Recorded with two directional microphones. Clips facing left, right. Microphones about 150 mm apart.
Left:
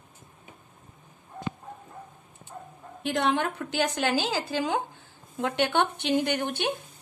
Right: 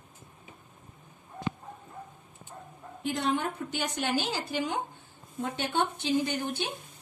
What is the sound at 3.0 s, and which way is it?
A woman's voice, 75° left (ahead or behind).